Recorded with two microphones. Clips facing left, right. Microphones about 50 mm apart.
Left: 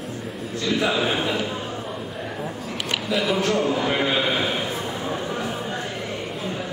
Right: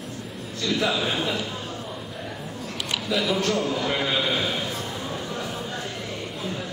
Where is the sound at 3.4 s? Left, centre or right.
Centre.